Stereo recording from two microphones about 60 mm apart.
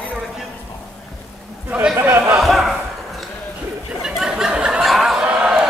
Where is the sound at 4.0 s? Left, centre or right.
Centre.